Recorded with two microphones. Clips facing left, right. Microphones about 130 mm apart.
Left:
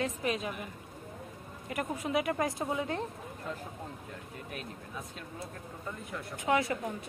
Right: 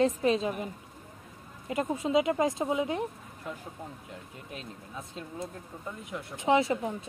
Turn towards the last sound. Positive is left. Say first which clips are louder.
# right 4 dB
turn(degrees=-25)  # may be behind; listen again after turning